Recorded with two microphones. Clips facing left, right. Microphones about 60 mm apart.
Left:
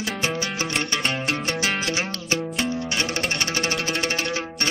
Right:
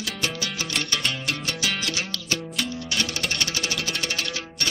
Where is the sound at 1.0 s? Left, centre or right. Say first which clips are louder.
Left 4 dB; left.